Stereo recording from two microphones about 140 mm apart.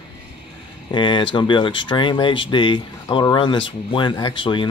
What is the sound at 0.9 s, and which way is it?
Speech, 35° left (ahead or behind).